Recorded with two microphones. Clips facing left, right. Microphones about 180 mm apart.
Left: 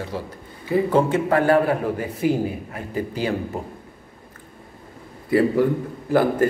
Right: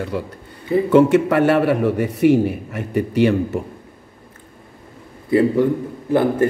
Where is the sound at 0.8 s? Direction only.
75° right (ahead or behind).